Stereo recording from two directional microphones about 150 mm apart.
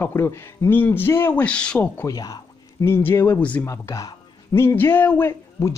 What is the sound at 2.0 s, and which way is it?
Speech, 25° left (ahead or behind).